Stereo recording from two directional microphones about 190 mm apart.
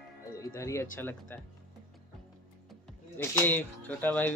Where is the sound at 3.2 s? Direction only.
10° left (ahead or behind).